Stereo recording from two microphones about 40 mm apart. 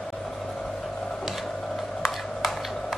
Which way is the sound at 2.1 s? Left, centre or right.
Centre.